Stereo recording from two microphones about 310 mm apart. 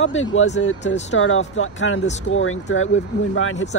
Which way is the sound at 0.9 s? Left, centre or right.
Left.